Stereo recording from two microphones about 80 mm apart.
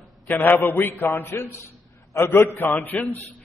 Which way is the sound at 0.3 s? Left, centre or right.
Left.